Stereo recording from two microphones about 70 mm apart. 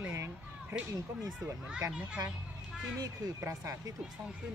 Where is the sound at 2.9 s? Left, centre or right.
Right.